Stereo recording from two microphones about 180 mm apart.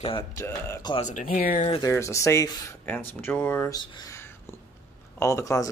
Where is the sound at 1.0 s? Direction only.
45° left (ahead or behind).